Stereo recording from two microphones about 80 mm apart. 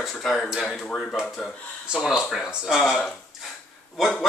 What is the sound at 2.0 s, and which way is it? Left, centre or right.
Speech, centre.